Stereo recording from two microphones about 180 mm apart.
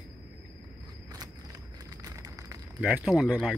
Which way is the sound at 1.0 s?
20° right (ahead or behind).